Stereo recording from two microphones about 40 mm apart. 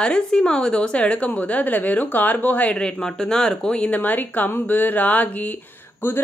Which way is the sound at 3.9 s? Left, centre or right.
Left.